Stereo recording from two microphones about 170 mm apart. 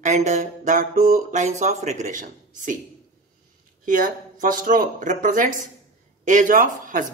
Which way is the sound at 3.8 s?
55° right (ahead or behind).